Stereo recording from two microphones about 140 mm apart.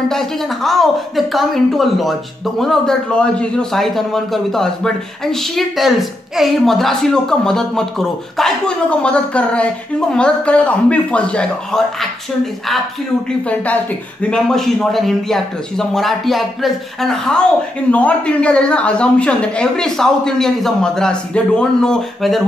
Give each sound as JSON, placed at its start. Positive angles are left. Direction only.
{"t": 0.1, "sound": "a man's voice", "side_deg": 5}
{"t": 14.3, "sound": "a man's voice", "side_deg": 5}